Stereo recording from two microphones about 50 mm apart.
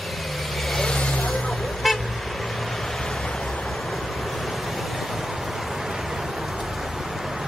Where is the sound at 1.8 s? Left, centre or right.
Centre.